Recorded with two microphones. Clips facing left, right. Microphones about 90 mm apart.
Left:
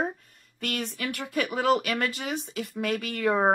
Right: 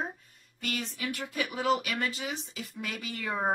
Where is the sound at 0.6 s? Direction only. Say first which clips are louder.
Left 4 dB; 60° left (ahead or behind).